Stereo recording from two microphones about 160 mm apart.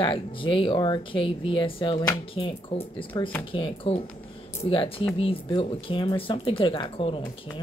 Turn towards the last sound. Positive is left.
turn(degrees=35)  # may be behind; listen again after turning